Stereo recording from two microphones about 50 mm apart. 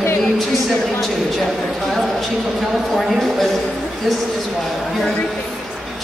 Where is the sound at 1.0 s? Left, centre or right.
Centre.